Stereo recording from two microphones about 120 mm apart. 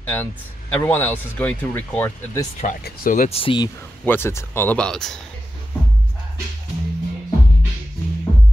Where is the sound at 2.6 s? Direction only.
90° left.